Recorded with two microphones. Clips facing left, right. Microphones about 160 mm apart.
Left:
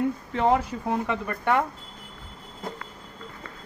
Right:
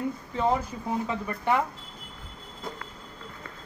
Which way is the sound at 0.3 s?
70° left (ahead or behind).